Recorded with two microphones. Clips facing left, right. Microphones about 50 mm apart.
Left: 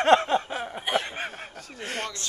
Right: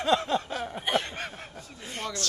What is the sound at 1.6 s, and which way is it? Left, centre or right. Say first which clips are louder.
Speech: left 6 dB; left.